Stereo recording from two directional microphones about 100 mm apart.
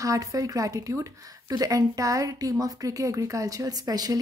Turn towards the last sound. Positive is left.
turn(degrees=-40)  # may be behind; listen again after turning